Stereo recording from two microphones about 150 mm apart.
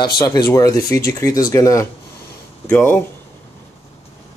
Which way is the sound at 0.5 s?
20° left (ahead or behind).